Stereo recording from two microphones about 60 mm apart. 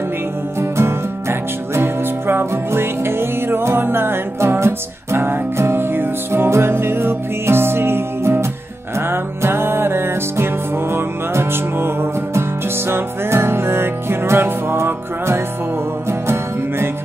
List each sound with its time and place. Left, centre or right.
0.6 s music: right